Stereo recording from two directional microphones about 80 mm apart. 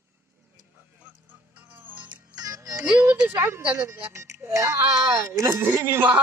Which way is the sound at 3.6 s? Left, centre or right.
Centre.